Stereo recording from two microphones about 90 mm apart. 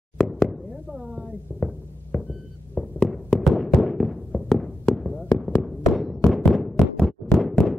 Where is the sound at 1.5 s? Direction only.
15° left (ahead or behind).